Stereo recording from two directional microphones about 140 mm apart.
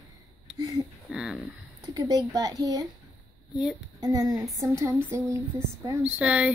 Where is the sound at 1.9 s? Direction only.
30° right (ahead or behind).